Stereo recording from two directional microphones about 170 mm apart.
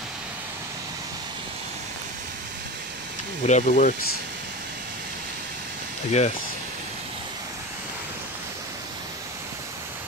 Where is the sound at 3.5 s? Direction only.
45° left (ahead or behind).